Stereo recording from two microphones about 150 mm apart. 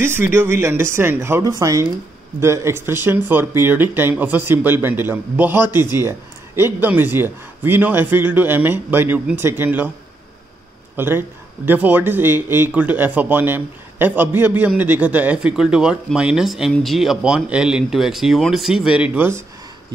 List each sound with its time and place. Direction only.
0.3 s speech: 15° right (ahead or behind)
11.0 s speech: 15° right (ahead or behind)